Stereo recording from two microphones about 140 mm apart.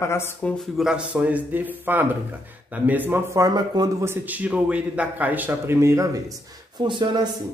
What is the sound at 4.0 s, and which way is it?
A man's voice, 15° right (ahead or behind).